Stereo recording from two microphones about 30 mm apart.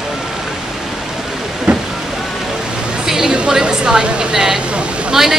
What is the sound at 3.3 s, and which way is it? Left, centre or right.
A woman's voice, right.